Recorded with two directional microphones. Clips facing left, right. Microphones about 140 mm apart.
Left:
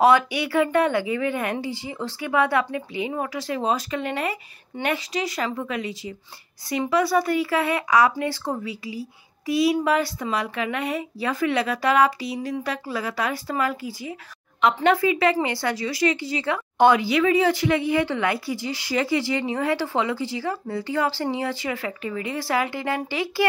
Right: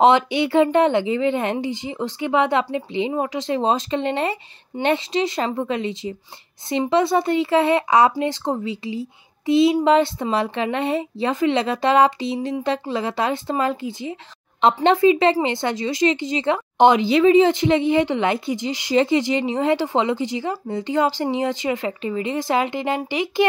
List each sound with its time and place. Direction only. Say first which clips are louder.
0.0 s a woman's voice: right 3 dB; 25° right (ahead or behind)